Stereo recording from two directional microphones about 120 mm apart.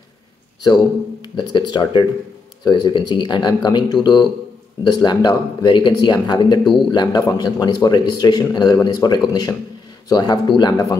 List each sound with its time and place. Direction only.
1.2 s a man's voice: 40° left (ahead or behind)